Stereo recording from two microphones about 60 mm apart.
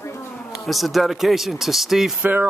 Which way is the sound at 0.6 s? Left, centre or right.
Centre.